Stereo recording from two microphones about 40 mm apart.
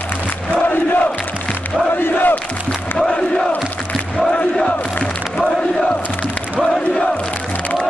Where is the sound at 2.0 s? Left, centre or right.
Left.